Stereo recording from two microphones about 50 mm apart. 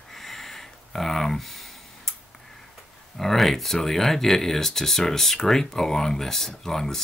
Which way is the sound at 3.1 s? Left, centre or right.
Centre.